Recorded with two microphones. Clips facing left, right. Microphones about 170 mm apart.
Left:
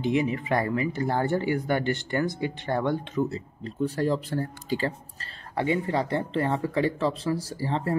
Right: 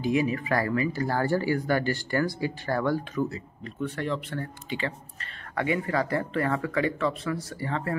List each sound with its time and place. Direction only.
0.0 s speech: 20° left (ahead or behind)